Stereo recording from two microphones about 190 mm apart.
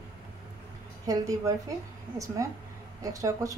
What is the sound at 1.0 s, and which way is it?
A woman's voice, 20° right (ahead or behind).